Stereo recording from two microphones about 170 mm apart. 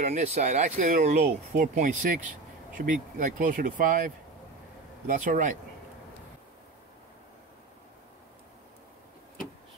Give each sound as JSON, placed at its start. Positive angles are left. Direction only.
{"t": 0.0, "sound": "speech", "side_deg": -40}